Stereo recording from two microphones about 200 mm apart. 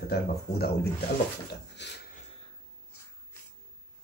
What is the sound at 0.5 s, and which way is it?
Speech, 30° left (ahead or behind).